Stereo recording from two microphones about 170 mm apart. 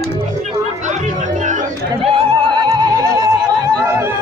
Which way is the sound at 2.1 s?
30° right (ahead or behind).